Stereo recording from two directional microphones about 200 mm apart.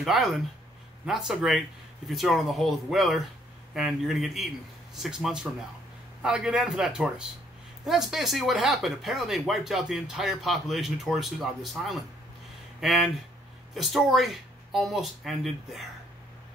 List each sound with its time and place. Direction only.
0.0 s speech: centre (ahead or behind)